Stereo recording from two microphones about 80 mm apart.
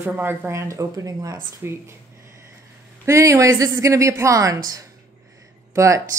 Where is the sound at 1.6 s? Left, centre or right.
Right.